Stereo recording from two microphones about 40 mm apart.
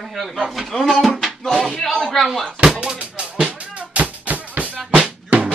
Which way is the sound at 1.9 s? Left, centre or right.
Centre.